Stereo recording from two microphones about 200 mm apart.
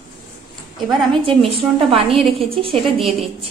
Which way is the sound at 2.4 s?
25° right (ahead or behind).